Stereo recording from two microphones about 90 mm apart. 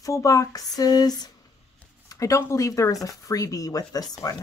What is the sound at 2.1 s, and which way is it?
Speech, 35° left (ahead or behind).